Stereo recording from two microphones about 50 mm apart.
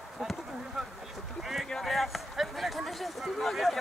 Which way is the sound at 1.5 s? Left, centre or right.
Centre.